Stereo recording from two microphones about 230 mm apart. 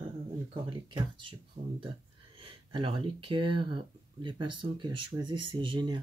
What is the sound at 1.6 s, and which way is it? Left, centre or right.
Speech, right.